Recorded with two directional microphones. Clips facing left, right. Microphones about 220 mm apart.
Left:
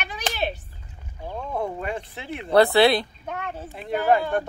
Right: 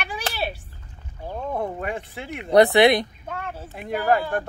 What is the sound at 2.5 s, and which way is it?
Speech, 20° right (ahead or behind).